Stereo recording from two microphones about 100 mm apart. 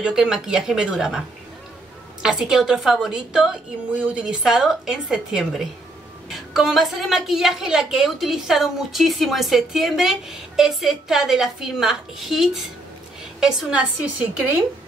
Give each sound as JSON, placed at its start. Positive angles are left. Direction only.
{"t": 0.0, "sound": "speech", "side_deg": -5}
{"t": 2.2, "sound": "a woman's voice", "side_deg": -5}